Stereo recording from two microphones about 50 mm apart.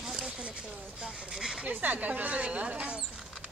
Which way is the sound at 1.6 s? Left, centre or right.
Right.